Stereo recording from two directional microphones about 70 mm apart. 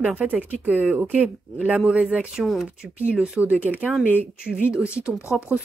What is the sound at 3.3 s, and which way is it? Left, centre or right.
Speech, right.